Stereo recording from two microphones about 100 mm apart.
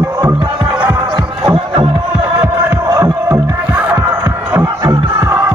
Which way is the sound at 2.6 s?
30° right (ahead or behind).